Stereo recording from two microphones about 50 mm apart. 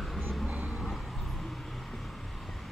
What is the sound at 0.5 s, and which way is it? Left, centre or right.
Vehicle, right.